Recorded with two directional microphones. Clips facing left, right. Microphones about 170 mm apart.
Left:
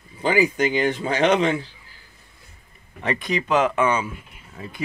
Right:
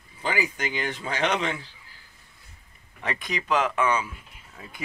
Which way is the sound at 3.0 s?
Centre (ahead or behind).